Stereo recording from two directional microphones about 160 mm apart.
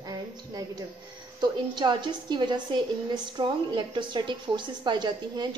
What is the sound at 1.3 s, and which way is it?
A woman's voice, 25° right (ahead or behind).